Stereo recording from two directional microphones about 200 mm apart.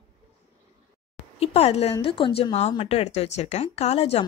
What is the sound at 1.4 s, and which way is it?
Speech, 30° left (ahead or behind).